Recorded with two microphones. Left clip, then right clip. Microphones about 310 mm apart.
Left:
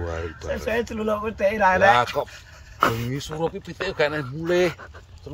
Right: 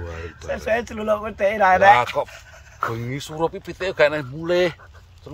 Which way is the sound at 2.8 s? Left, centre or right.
Left.